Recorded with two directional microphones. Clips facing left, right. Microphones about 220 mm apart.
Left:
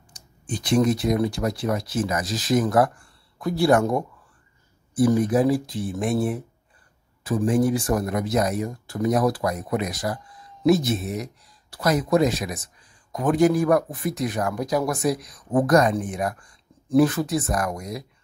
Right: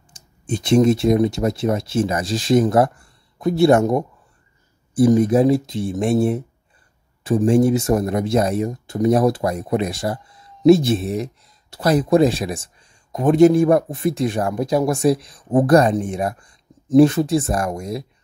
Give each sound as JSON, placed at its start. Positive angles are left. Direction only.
{"t": 0.1, "sound": "speech", "side_deg": -25}